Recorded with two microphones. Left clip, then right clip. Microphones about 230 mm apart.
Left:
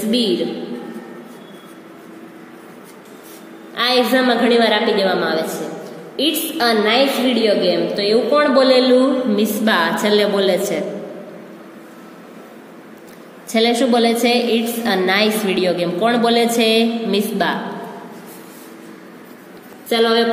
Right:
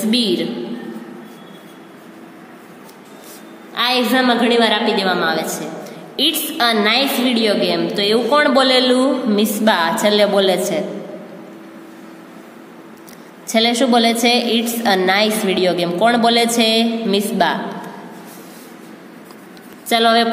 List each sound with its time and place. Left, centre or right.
3.7 s a woman's voice: right
13.5 s a woman's voice: right
19.9 s a woman's voice: right